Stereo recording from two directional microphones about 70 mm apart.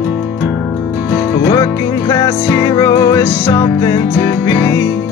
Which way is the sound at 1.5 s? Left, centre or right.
Left.